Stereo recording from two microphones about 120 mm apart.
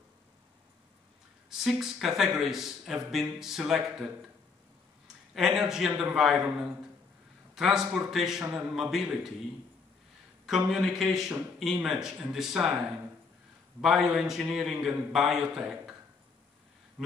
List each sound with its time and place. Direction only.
1.6 s a man's voice: centre (ahead or behind)
10.4 s speech: 5° right (ahead or behind)